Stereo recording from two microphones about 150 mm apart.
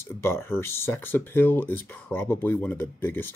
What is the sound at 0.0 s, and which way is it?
Speech, 15° left (ahead or behind).